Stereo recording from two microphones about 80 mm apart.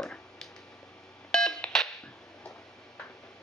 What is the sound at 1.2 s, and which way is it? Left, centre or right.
Beep, centre.